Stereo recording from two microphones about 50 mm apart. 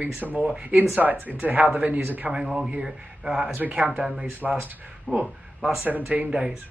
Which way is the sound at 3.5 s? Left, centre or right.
Right.